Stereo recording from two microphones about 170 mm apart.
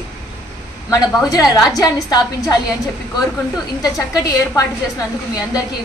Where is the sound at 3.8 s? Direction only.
20° left (ahead or behind).